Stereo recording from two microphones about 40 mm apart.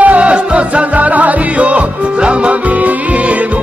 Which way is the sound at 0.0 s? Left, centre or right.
Right.